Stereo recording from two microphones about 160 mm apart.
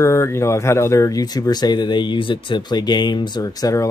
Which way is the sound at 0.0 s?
15° left (ahead or behind).